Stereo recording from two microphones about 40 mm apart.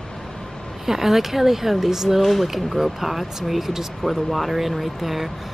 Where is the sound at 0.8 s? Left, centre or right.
Centre.